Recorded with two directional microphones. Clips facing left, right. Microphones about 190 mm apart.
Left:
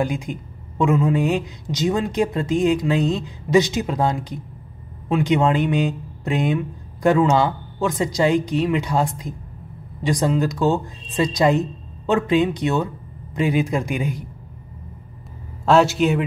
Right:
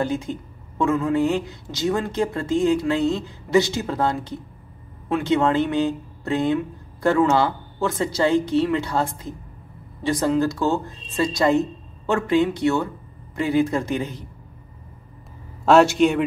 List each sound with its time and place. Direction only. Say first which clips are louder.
0.0 s speech: even; 15° left (ahead or behind)
15.6 s a man's voice: right 1 dB; centre (ahead or behind)